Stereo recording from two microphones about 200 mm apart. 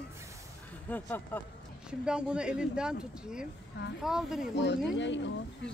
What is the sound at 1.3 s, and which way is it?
Speech, 10° left (ahead or behind).